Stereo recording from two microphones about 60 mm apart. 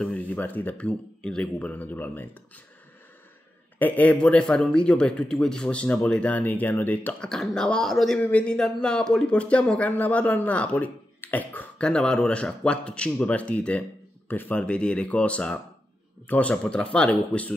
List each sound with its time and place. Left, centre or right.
0.0 s a sound: centre
0.4 s speech: left
3.8 s speech: left
7.2 s a man's voice: centre
8.2 s a man's voice: left
11.1 s beatboxing: left
11.8 s speech: centre
14.2 s speech: left